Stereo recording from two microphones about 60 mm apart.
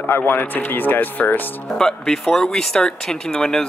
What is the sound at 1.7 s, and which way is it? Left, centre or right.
Speech, centre.